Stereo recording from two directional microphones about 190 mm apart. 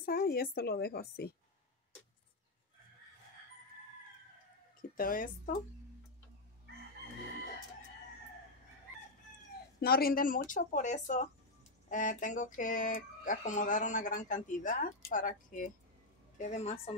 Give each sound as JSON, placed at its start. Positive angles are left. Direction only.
{"t": 0.0, "sound": "a woman's voice", "side_deg": 50}
{"t": 4.9, "sound": "speech", "side_deg": 50}
{"t": 9.8, "sound": "a woman's voice", "side_deg": 55}